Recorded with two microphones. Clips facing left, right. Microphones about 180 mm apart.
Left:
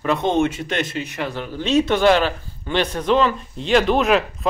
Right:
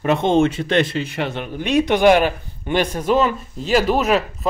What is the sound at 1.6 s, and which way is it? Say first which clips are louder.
Speech: right 2 dB; 15° right (ahead or behind).